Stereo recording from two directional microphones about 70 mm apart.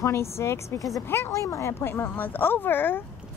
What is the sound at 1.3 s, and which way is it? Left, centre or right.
A woman's voice, left.